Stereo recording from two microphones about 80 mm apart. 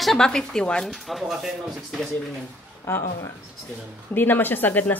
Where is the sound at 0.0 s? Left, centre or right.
Centre.